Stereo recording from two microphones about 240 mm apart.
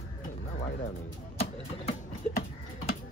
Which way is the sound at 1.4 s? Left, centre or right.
Left.